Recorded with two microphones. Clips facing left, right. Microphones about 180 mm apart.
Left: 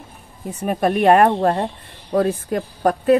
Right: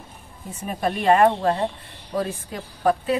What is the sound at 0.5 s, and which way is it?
Speech, 70° left (ahead or behind).